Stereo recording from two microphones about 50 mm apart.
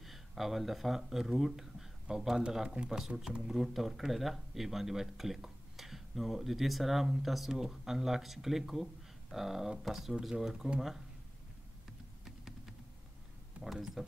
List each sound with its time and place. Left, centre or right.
0.0 s speech: centre
2.8 s speech: right
3.2 s speech: centre
13.6 s speech: centre